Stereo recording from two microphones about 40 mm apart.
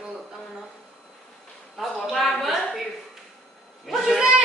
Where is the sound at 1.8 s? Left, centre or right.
Centre.